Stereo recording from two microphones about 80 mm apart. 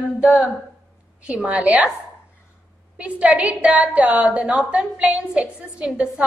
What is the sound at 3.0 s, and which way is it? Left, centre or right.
A woman's voice, centre.